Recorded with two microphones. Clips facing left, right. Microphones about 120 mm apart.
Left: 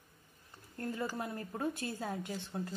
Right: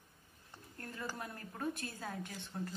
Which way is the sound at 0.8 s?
25° left (ahead or behind).